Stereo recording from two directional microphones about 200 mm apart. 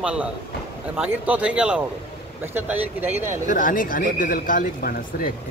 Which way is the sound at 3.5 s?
45° left (ahead or behind).